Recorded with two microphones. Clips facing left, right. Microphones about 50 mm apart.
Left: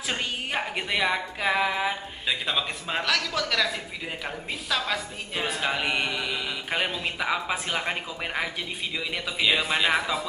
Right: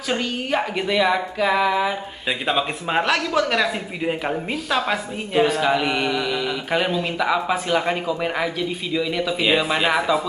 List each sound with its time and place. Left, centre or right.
0.7 s speech: centre
2.2 s a man's voice: right
5.6 s speech: centre